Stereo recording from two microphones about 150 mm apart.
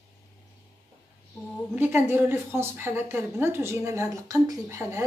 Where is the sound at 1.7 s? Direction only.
15° right (ahead or behind).